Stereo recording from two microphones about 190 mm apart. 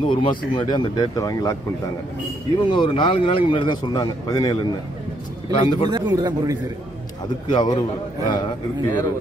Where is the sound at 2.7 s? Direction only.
25° left (ahead or behind).